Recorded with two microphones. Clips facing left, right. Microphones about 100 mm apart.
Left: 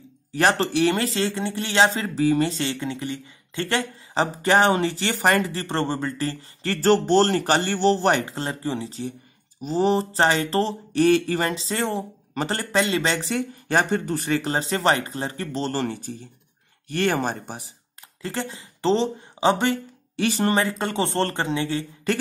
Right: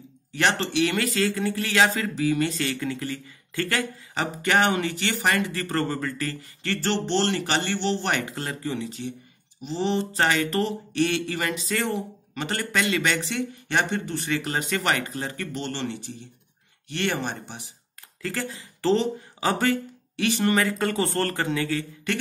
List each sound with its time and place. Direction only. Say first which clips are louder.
0.3 s speech: left 4 dB; 35° left (ahead or behind)
18.2 s speech: left 1 dB; 25° left (ahead or behind)